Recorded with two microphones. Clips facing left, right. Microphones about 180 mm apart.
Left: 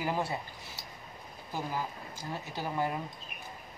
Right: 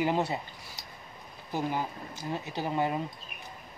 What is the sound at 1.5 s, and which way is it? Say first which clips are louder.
Speech: right 4 dB; 20° right (ahead or behind).